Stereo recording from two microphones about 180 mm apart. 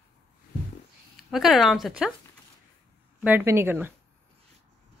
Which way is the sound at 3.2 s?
10° right (ahead or behind).